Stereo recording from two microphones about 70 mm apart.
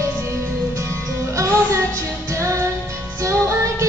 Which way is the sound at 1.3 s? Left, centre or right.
Right.